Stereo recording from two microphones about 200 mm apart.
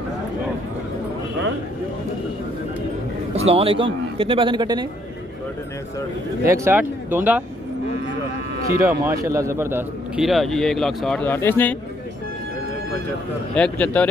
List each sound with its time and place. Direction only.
3.3 s a man's voice: 30° right (ahead or behind)
6.4 s speech: 15° right (ahead or behind)
8.8 s a man's voice: 10° right (ahead or behind); by 11.7 s 10° left (ahead or behind)
13.6 s a man's voice: 5° left (ahead or behind)